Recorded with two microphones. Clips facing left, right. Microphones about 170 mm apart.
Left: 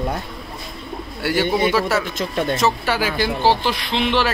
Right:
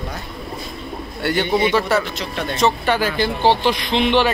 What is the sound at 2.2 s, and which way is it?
Speech, 45° left (ahead or behind).